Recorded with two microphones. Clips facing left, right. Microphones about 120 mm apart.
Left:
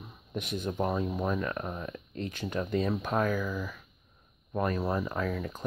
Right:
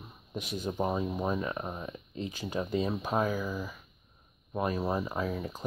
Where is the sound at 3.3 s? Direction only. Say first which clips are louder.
Left 1 dB; 30° right (ahead or behind).